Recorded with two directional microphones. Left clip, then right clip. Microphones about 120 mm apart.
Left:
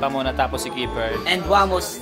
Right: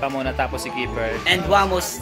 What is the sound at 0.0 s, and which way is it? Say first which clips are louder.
Speech: left 2 dB; 20° left (ahead or behind).